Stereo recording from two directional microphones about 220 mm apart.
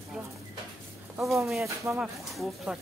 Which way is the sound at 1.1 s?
Centre (ahead or behind).